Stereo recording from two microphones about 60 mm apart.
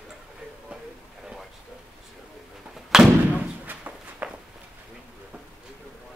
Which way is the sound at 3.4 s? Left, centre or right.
Right.